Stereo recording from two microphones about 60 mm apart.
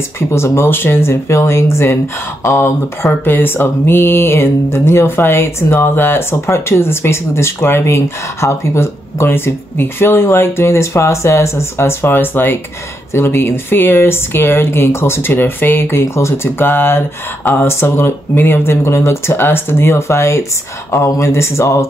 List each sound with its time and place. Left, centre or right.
0.3 s speech: left
3.3 s speech: left
16.4 s speech: left